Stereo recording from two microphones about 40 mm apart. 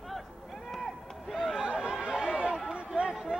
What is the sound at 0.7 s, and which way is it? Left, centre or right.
Run, centre.